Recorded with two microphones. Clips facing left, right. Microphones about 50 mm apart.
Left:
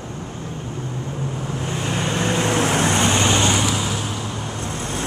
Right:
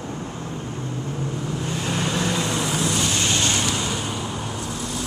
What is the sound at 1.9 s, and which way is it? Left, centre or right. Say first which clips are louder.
Vehicle: left 2 dB; left.